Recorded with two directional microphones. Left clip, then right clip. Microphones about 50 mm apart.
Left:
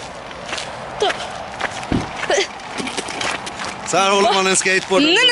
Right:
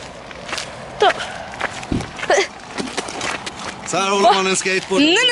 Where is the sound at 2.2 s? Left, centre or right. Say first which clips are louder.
Right 3 dB; right.